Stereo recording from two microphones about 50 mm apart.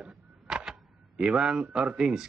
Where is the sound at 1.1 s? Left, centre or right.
Centre.